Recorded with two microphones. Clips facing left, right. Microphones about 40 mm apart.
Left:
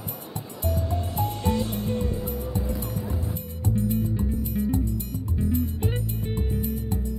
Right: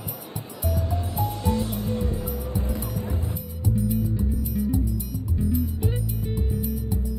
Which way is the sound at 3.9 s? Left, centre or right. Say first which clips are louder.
Even; left.